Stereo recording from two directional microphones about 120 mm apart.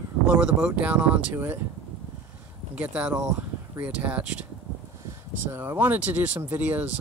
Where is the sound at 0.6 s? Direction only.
10° right (ahead or behind).